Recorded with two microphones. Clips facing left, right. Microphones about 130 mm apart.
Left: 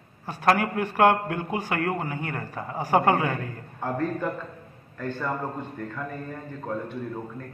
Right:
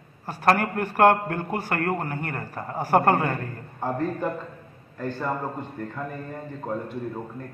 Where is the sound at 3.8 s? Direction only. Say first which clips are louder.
Right 1 dB; 15° right (ahead or behind).